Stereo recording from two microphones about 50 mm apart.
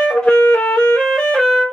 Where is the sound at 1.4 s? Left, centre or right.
Centre.